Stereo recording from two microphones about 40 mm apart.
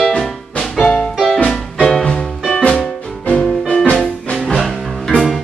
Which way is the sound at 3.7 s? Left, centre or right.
Left.